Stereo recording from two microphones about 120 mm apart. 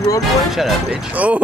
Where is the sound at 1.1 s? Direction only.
10° right (ahead or behind).